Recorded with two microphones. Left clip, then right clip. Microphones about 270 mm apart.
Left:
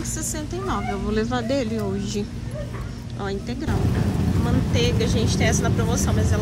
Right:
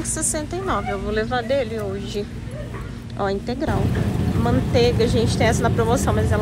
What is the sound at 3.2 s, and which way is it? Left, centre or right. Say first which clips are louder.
Speech: right 5 dB; centre.